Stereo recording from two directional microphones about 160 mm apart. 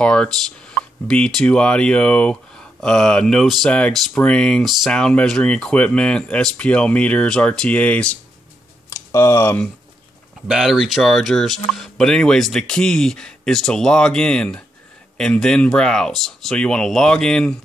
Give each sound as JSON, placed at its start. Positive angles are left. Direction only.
{"t": 0.0, "sound": "speech", "side_deg": 5}
{"t": 8.9, "sound": "speech", "side_deg": 20}
{"t": 10.5, "sound": "speech", "side_deg": 0}